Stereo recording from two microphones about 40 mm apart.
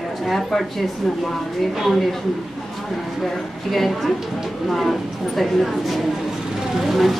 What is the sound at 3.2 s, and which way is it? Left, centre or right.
Speech, centre.